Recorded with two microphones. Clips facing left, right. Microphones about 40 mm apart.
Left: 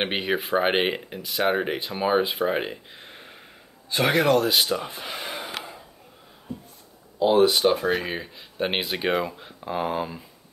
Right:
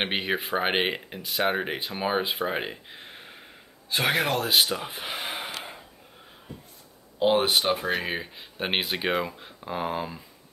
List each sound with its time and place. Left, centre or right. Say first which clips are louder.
0.0 s speech: left 2 dB; centre
7.2 s speech: left 4 dB; right
7.5 s speech: left 3 dB; centre
7.8 s speech: left 3 dB; centre